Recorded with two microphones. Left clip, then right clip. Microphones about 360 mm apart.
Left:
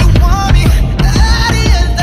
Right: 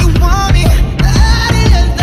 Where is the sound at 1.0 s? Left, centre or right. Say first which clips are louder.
Left 1 dB; centre.